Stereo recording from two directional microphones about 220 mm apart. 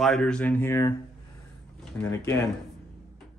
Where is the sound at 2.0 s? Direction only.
15° left (ahead or behind).